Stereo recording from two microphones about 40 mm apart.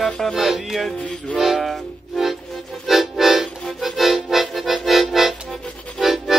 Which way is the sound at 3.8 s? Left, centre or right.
Centre.